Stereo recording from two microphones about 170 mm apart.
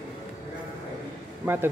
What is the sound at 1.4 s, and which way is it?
Speech, 10° right (ahead or behind).